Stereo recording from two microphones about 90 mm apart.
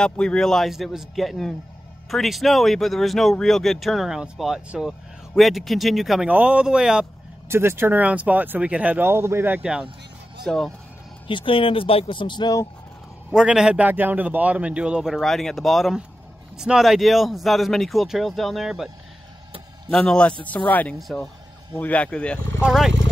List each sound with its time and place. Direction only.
0.0 s speech: 10° left (ahead or behind)
6.2 s speech: 15° right (ahead or behind)
7.4 s speech: 30° right (ahead or behind)
9.0 s speech: 30° right (ahead or behind)
9.6 s speech: 10° right (ahead or behind)
10.4 s speech: centre (ahead or behind)
11.2 s speech: 75° left (ahead or behind); by 12.5 s 55° left (ahead or behind)
13.3 s speech: 5° right (ahead or behind)
19.9 s speech: 10° left (ahead or behind)
22.6 s speech: 5° right (ahead or behind)